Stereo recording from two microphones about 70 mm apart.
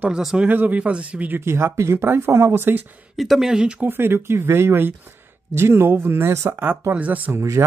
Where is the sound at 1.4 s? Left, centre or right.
Right.